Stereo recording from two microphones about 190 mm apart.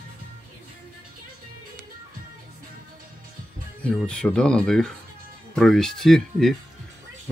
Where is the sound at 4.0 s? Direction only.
5° left (ahead or behind).